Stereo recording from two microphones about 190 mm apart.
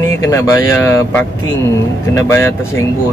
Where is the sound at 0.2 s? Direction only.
15° left (ahead or behind).